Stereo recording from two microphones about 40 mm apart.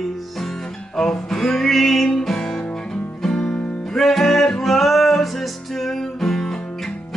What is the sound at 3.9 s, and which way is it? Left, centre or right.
Music, centre.